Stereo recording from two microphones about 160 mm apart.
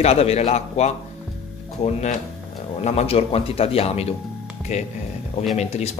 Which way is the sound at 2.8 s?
40° left (ahead or behind).